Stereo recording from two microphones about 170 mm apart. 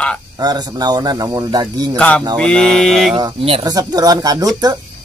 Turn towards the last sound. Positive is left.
turn(degrees=-20)  # may be behind; listen again after turning